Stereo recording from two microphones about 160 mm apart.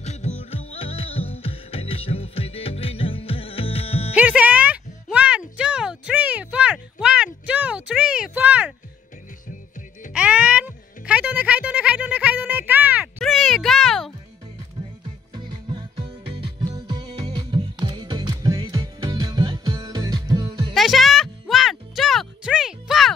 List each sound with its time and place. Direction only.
0.0 s music: 45° left (ahead or behind)
4.1 s music: 10° right (ahead or behind)
5.1 s a sound: 5° right (ahead or behind)
10.1 s music: 10° right (ahead or behind)
13.2 s a sound: centre (ahead or behind)
15.3 s music: 30° right (ahead or behind)
20.7 s music: centre (ahead or behind)